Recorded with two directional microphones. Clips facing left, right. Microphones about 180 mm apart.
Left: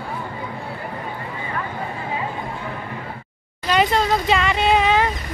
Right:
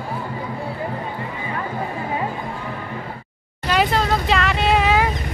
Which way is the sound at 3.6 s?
Centre (ahead or behind).